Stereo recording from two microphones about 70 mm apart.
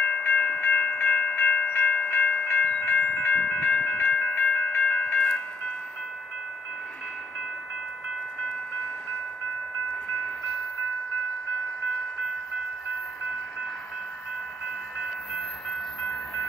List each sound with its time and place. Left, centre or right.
0.2 s wind chime: centre
16.0 s train: centre